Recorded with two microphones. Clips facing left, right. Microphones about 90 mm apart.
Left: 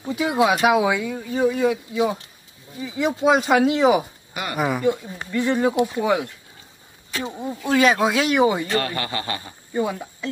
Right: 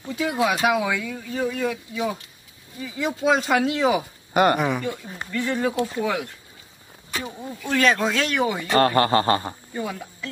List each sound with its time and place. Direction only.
0.0 s speech: 15° left (ahead or behind)
4.3 s speech: 50° right (ahead or behind)
4.6 s speech: 5° left (ahead or behind)
4.8 s speech: 15° left (ahead or behind)
7.2 s speech: 25° left (ahead or behind)
7.6 s speech: 10° left (ahead or behind)
8.7 s speech: 40° right (ahead or behind)
9.8 s speech: 20° left (ahead or behind)